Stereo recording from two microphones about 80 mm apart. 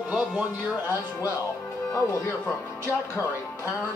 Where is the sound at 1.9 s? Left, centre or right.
Left.